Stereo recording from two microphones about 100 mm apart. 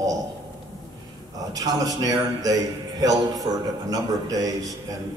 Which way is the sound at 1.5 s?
40° right (ahead or behind).